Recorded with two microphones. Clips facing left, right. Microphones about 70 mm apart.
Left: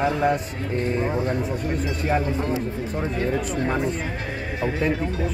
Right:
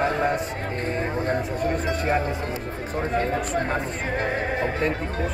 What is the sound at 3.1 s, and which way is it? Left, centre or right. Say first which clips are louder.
Speech: right 2 dB; right.